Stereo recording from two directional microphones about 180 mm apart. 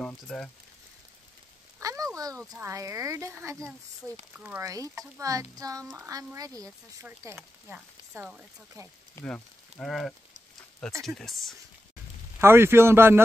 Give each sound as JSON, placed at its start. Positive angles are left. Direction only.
{"t": 0.0, "sound": "speech", "side_deg": 5}
{"t": 1.8, "sound": "a sound", "side_deg": -20}
{"t": 2.6, "sound": "speech", "side_deg": -15}
{"t": 9.1, "sound": "speech", "side_deg": 5}
{"t": 12.4, "sound": "speech", "side_deg": -15}